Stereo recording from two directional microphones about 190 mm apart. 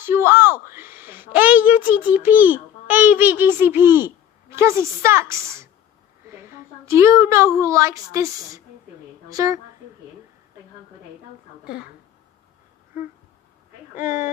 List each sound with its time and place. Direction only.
0.0 s a woman's voice: 10° right (ahead or behind)
11.6 s a woman's voice: 5° right (ahead or behind)
13.9 s speech: 40° left (ahead or behind)